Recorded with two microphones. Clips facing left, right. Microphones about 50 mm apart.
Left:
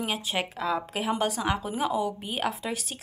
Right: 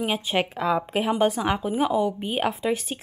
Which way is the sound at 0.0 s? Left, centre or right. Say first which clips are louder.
Right 5 dB; right.